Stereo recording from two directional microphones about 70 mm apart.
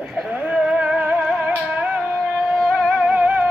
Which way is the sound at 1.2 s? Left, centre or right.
Centre.